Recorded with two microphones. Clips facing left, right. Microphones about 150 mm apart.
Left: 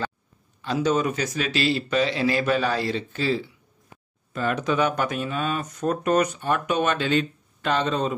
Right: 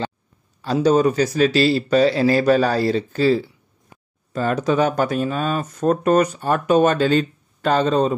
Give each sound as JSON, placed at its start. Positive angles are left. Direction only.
{"t": 0.6, "sound": "speech", "side_deg": -35}